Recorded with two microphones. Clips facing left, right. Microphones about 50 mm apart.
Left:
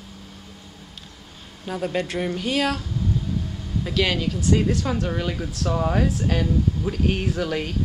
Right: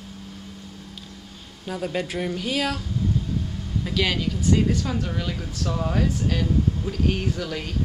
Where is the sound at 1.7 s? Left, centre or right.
Centre.